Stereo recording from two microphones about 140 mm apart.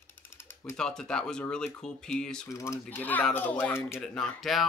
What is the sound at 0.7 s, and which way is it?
Speech, 5° left (ahead or behind).